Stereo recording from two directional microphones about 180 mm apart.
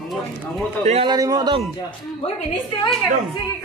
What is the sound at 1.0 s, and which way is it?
Speech, 20° right (ahead or behind).